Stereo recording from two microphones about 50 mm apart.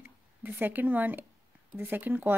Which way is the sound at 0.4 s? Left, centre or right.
Right.